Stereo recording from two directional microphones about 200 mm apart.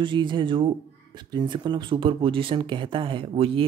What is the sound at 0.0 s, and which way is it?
Speech, 25° right (ahead or behind).